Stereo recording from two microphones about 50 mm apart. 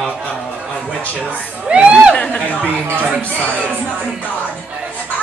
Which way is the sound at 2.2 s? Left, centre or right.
Left.